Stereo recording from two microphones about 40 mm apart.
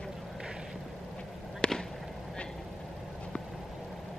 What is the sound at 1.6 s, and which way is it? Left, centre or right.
Fireworks, left.